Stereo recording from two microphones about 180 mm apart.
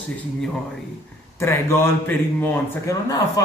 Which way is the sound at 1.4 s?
15° left (ahead or behind).